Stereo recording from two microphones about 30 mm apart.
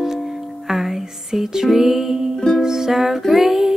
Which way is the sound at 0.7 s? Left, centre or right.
Centre.